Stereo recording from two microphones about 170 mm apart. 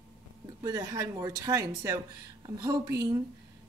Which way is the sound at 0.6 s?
20° right (ahead or behind).